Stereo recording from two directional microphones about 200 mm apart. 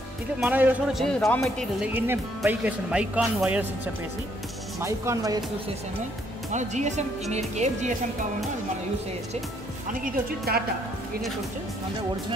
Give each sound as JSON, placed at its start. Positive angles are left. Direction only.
{"t": 0.4, "sound": "a man's voice", "side_deg": -10}
{"t": 2.0, "sound": "speech", "side_deg": -10}
{"t": 6.5, "sound": "speech", "side_deg": -35}
{"t": 10.0, "sound": "a woman's voice", "side_deg": -50}